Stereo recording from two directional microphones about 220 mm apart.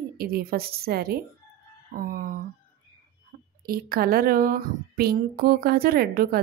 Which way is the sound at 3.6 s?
40° right (ahead or behind).